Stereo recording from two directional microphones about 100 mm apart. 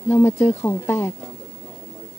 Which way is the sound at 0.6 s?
25° left (ahead or behind).